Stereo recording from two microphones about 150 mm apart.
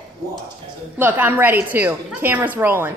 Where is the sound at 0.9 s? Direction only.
10° right (ahead or behind).